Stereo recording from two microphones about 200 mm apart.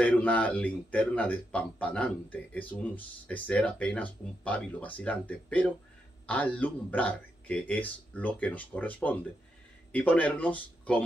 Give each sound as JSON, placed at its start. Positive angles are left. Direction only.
{"t": 0.0, "sound": "speech", "side_deg": 5}